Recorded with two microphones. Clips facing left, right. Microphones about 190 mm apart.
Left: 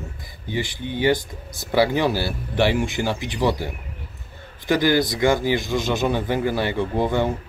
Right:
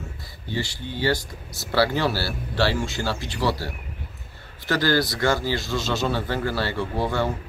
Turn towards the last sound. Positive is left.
turn(degrees=20)  # may be behind; listen again after turning